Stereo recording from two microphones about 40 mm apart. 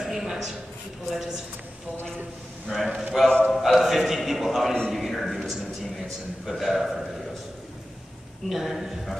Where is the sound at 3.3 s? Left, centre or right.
Left.